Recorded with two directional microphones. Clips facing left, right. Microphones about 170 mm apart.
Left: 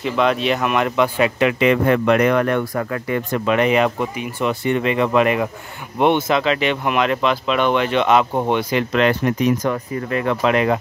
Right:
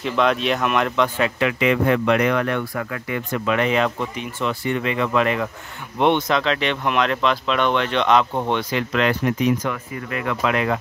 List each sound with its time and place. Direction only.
0.0 s speech: centre (ahead or behind)
1.6 s speech: 50° left (ahead or behind)
3.4 s speech: 15° left (ahead or behind)
9.2 s speech: 45° left (ahead or behind); by 10.8 s 25° left (ahead or behind)